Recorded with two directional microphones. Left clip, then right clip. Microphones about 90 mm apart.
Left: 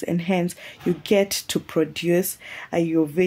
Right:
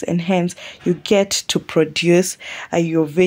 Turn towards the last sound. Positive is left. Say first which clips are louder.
# right 4 dB
turn(degrees=-40)  # may be behind; listen again after turning